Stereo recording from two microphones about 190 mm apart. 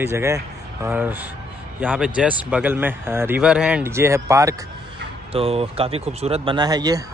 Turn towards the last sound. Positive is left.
turn(degrees=-20)  # may be behind; listen again after turning